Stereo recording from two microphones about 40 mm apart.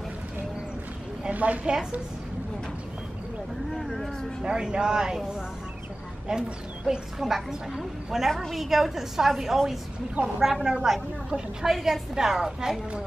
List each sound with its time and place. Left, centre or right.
1.3 s a woman's voice: right
3.7 s vehicle: centre
4.4 s speech: centre
6.3 s a woman's voice: centre
7.2 s a woman's voice: centre
8.6 s a woman's voice: centre